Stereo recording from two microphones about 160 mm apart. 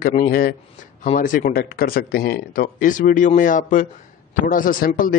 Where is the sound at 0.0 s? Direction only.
60° left (ahead or behind).